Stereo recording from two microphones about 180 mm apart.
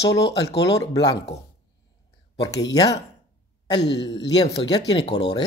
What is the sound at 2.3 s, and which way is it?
Speech, 20° left (ahead or behind).